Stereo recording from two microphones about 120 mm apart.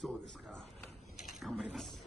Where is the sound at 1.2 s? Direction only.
Centre (ahead or behind).